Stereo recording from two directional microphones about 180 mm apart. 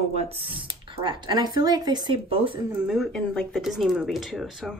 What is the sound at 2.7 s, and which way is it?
Speech, centre (ahead or behind).